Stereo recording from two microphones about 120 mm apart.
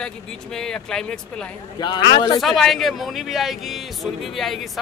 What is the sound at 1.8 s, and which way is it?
Speech, 40° left (ahead or behind).